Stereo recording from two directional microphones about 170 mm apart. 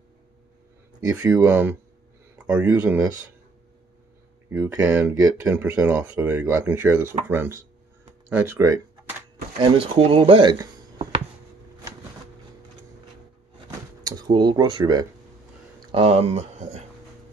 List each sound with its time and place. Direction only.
1.1 s speech: 10° right (ahead or behind)
4.5 s speech: 15° right (ahead or behind)
9.6 s speech: 30° right (ahead or behind)
14.0 s speech: 25° right (ahead or behind); by 16.8 s 40° right (ahead or behind)